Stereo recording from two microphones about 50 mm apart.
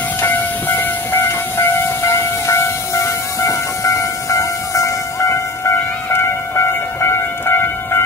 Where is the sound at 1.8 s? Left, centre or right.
Left.